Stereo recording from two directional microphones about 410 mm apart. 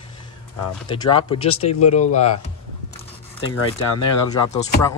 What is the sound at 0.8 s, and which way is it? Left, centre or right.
Speech, centre.